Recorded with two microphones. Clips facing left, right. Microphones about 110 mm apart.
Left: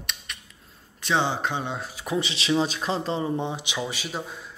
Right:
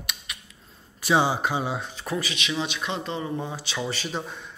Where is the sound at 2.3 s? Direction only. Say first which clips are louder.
Left 5 dB; 30° left (ahead or behind).